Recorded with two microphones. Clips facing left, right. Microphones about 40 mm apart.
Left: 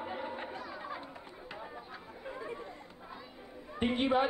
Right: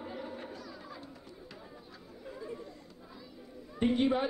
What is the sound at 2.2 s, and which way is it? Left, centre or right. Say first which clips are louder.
Chatter: left 1 dB; left.